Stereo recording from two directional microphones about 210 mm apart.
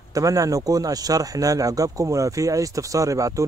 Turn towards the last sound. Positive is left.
turn(degrees=-15)  # may be behind; listen again after turning